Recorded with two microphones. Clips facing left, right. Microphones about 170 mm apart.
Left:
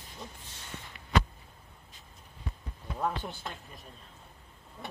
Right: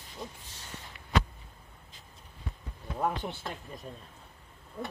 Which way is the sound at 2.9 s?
15° right (ahead or behind).